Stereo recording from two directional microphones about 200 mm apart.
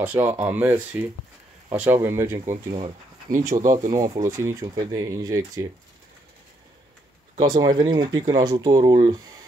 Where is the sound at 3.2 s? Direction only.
40° right (ahead or behind).